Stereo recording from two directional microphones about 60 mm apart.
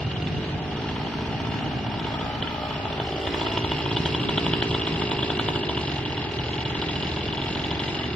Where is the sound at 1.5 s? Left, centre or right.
Centre.